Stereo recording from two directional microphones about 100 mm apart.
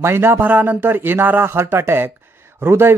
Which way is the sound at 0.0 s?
25° right (ahead or behind).